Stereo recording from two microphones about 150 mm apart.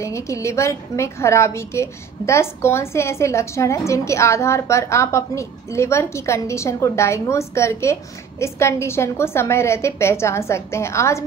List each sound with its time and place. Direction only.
0.0 s a woman's voice: 20° left (ahead or behind)